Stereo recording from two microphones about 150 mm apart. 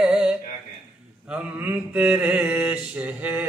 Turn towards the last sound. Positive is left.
turn(degrees=-10)  # may be behind; listen again after turning